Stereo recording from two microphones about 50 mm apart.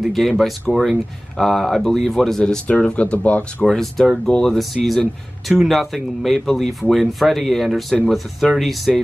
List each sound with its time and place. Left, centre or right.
0.1 s speech: centre
2.7 s speech: left
3.6 s speech: centre
4.6 s speech: centre